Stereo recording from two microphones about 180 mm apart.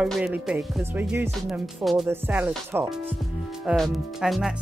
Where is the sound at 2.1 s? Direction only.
10° right (ahead or behind).